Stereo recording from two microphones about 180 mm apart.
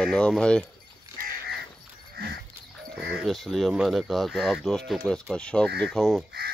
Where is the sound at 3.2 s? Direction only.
Centre (ahead or behind).